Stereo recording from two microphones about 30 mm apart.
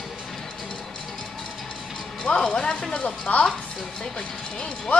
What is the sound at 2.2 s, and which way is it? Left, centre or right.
Speech, left.